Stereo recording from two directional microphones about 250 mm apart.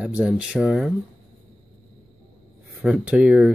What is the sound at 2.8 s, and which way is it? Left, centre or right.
Speech, centre.